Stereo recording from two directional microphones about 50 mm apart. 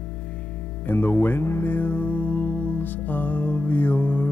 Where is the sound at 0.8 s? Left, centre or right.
Left.